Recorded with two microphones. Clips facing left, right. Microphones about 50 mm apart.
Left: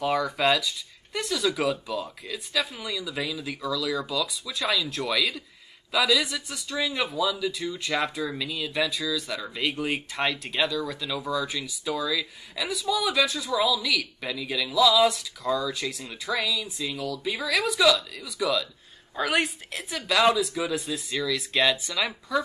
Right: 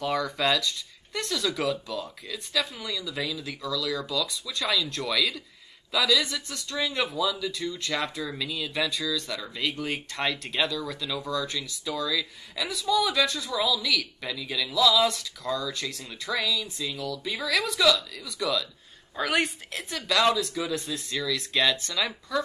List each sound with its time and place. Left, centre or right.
0.0 s a man's voice: centre